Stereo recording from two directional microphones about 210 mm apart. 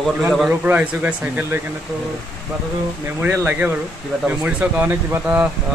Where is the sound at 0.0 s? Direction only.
Centre (ahead or behind).